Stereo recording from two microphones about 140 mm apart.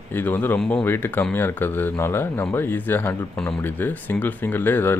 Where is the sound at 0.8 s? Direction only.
15° left (ahead or behind).